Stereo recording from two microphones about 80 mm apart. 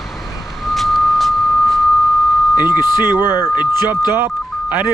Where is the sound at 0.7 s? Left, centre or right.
Centre.